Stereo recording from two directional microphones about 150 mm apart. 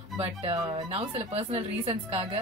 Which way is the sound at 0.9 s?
40° right (ahead or behind).